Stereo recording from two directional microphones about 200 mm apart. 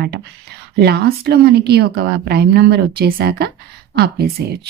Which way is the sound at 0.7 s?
50° right (ahead or behind).